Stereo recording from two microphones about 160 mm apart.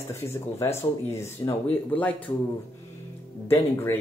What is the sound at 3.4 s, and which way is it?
Speech, 15° left (ahead or behind).